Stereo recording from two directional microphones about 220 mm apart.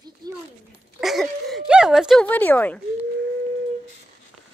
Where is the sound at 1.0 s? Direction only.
Centre (ahead or behind).